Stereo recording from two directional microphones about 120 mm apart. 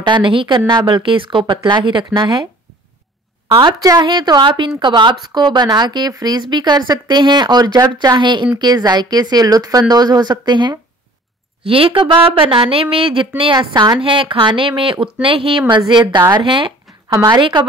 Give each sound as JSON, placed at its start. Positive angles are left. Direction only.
{"t": 0.0, "sound": "speech", "side_deg": -40}
{"t": 3.4, "sound": "a woman's voice", "side_deg": -45}
{"t": 11.6, "sound": "a woman's voice", "side_deg": -50}
{"t": 13.6, "sound": "speech", "side_deg": -35}
{"t": 14.0, "sound": "a woman's voice", "side_deg": -45}